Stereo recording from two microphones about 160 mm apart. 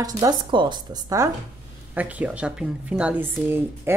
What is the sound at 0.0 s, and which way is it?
A woman's voice, 25° right (ahead or behind).